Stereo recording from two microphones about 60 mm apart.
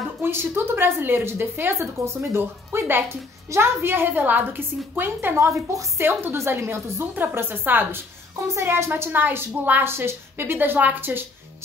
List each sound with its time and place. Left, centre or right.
0.2 s a woman's voice: right
5.5 s a woman's voice: right
6.3 s a woman's voice: right
8.5 s a woman's voice: right